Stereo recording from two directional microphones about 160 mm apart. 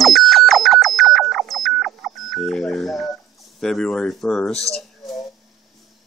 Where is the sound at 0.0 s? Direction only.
Centre (ahead or behind).